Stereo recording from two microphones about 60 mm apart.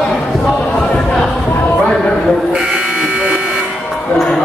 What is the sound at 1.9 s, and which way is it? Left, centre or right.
Music, centre.